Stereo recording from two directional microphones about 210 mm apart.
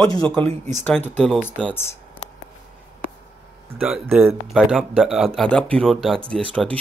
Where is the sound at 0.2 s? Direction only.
10° left (ahead or behind).